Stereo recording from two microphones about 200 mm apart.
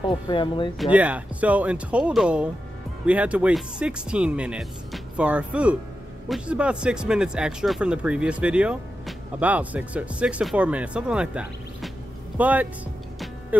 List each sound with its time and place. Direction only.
0.1 s speech: 25° left (ahead or behind)
0.9 s speech: 5° right (ahead or behind)